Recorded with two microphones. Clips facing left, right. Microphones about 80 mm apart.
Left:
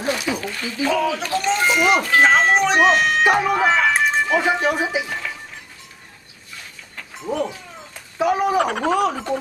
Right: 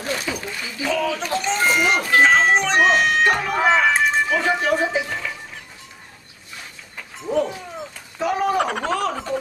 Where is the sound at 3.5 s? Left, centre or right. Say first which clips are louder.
Even; centre.